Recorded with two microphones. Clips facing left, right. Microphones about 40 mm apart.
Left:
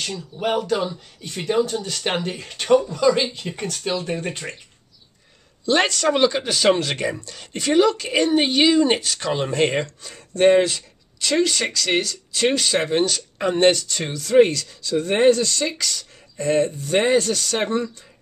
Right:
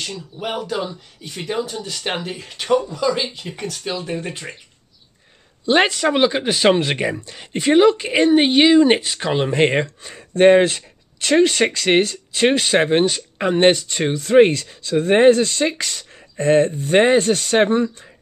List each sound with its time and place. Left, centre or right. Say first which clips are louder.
0.0 s speech: left 2 dB; centre
5.7 s speech: right 3 dB; centre